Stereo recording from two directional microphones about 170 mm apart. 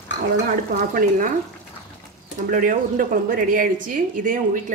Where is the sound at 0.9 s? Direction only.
50° right (ahead or behind).